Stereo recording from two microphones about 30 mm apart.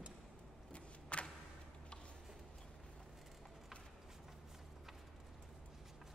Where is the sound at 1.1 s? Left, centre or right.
Left.